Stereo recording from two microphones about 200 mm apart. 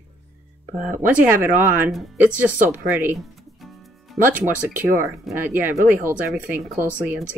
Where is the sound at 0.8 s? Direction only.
10° right (ahead or behind).